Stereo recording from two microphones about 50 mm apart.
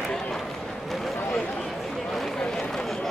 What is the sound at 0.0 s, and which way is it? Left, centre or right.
Run, centre.